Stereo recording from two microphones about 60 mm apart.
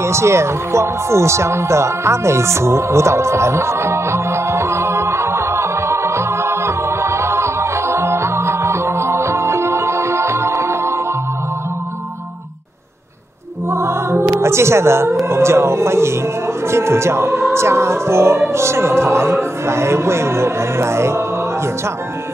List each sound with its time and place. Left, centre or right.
0.0 s music: right
13.7 s music: right
14.4 s speech: right